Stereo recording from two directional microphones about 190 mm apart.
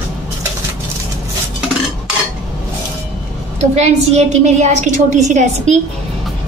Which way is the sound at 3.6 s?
35° right (ahead or behind).